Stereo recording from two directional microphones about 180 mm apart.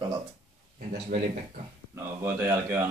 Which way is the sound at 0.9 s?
40° right (ahead or behind).